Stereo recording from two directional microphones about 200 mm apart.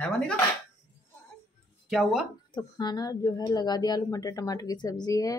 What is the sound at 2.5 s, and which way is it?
Speech, 20° left (ahead or behind).